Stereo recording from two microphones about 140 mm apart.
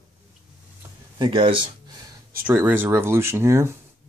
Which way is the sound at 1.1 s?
35° right (ahead or behind).